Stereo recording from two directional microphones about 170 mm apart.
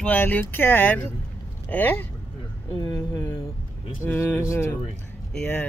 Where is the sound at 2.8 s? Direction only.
20° left (ahead or behind).